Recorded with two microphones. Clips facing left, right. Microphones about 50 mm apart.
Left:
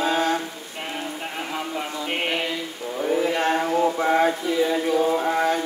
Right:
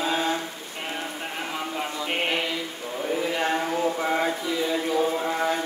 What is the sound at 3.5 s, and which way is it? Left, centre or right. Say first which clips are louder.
Mantra: left 4 dB; centre.